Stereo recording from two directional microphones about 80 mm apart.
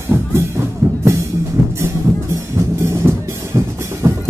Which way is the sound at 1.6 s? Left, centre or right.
Right.